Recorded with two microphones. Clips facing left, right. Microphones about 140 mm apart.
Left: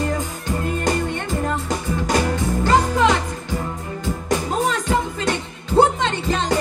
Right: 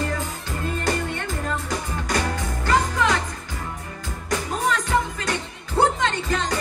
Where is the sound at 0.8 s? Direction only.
20° left (ahead or behind).